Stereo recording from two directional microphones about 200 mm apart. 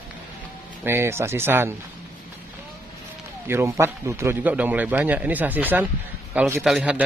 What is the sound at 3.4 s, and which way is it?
A man's voice, 10° right (ahead or behind).